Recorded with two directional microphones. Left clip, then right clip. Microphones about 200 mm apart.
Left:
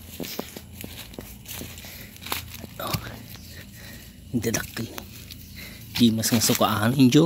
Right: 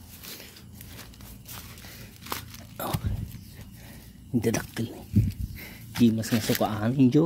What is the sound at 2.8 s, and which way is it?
Whispering, 30° right (ahead or behind).